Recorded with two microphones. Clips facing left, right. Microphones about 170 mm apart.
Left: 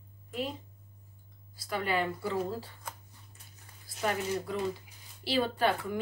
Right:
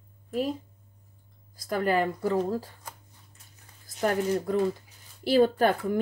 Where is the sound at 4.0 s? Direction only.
45° right (ahead or behind).